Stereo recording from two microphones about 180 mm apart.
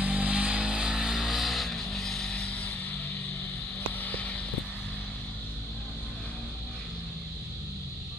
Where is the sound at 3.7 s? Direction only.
10° left (ahead or behind).